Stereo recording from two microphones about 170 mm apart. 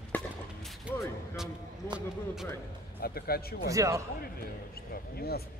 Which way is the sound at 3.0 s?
65° left (ahead or behind).